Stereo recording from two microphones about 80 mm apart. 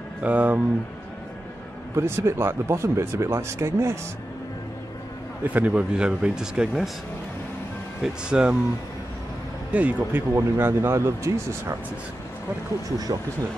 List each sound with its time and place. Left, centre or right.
0.2 s speech: centre
2.0 s speech: right
5.4 s speech: right
8.0 s speech: centre
9.7 s speech: centre
10.3 s speech: right